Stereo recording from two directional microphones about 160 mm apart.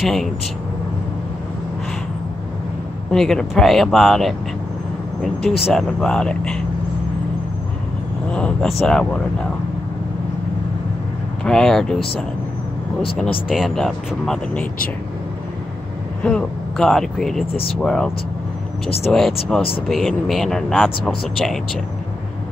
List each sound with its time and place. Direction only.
0.0 s speech: centre (ahead or behind)
3.1 s speech: 5° left (ahead or behind)
5.7 s speech: centre (ahead or behind)
8.3 s speech: 5° left (ahead or behind)
11.4 s speech: 5° left (ahead or behind)
13.5 s speech: centre (ahead or behind)
16.2 s speech: 5° left (ahead or behind)